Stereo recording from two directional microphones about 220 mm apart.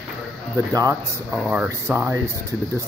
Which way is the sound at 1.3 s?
5° right (ahead or behind).